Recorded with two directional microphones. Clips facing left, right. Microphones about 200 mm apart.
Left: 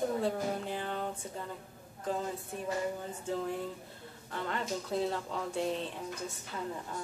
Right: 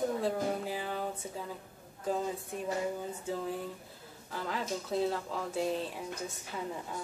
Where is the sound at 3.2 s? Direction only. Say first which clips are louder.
Left 2 dB; 5° right (ahead or behind).